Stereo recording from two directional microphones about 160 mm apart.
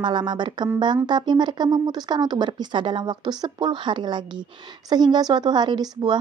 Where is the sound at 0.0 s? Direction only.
30° right (ahead or behind).